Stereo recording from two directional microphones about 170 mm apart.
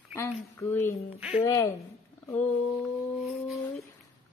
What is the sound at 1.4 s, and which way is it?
Speech, 20° left (ahead or behind).